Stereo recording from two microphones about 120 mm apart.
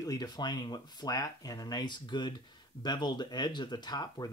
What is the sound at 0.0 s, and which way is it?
Speech, 30° left (ahead or behind).